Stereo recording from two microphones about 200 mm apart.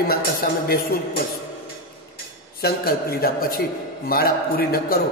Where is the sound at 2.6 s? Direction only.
50° left (ahead or behind).